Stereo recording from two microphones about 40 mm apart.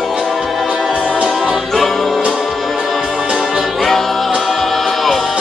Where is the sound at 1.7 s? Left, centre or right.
Centre.